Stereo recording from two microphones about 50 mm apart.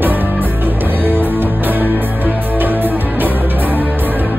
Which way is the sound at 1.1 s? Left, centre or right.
Right.